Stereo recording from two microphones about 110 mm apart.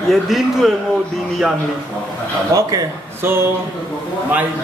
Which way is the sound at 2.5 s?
30° right (ahead or behind).